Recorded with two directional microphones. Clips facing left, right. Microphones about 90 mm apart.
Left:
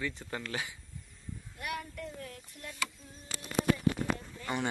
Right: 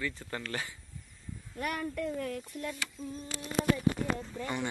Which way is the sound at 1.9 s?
60° right (ahead or behind).